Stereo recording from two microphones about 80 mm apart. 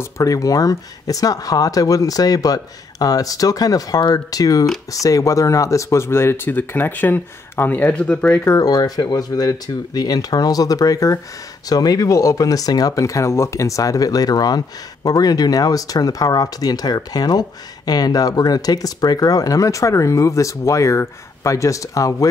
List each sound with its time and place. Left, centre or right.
0.0 s speech: left; by 8.4 s centre
8.5 s speech: left